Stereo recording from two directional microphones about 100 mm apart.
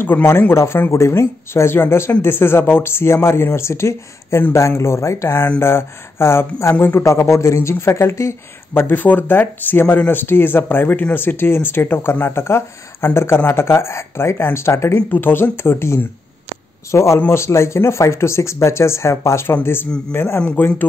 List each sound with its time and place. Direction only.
0.0 s speech: 20° left (ahead or behind)